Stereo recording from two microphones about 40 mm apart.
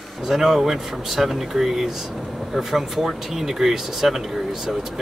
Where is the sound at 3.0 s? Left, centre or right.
Centre.